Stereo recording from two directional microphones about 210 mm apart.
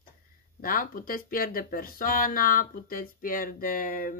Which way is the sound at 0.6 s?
40° left (ahead or behind).